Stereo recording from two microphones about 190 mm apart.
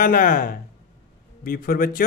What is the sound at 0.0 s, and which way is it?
Speech, 45° left (ahead or behind).